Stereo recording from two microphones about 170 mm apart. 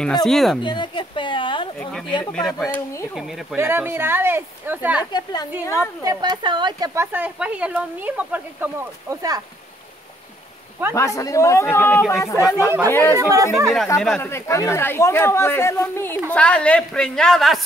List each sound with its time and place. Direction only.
0.2 s a woman's voice: centre (ahead or behind)
0.6 s a woman's voice: 30° left (ahead or behind)
1.8 s a woman's voice: 5° left (ahead or behind)
3.5 s speech: 15° right (ahead or behind)
5.1 s a woman's voice: 25° left (ahead or behind)
6.0 s speech: 25° right (ahead or behind)
7.0 s speech: 10° right (ahead or behind)
11.0 s a man's voice: 20° left (ahead or behind)
12.4 s speech: 5° right (ahead or behind)
12.9 s a man's voice: 15° left (ahead or behind)
13.2 s speech: 20° right (ahead or behind)
14.2 s a man's voice: 15° left (ahead or behind)